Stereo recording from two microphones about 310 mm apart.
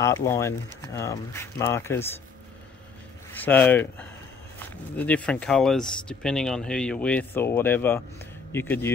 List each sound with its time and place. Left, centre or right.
0.0 s speech: centre
3.3 s speech: centre